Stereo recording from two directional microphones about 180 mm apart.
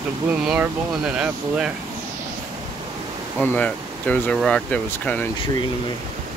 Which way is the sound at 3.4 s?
10° left (ahead or behind).